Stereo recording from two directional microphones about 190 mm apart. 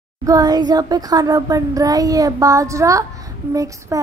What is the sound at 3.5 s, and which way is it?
Speech, 15° right (ahead or behind).